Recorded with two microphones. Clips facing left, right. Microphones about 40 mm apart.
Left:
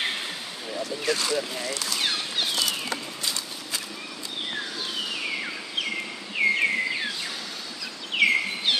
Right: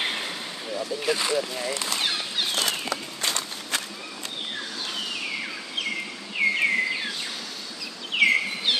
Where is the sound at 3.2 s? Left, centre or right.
Right.